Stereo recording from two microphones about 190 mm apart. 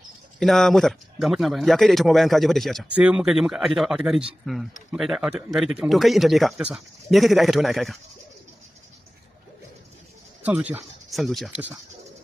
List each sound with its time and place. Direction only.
0.4 s a man's voice: centre (ahead or behind)
10.4 s speech: 10° right (ahead or behind)